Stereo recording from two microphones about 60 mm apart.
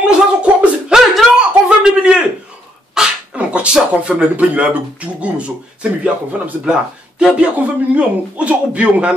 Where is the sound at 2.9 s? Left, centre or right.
Centre.